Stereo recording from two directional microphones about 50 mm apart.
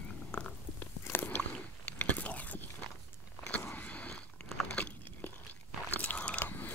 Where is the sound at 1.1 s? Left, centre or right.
Left.